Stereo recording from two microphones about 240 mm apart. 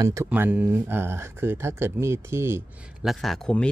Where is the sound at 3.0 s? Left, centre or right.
Centre.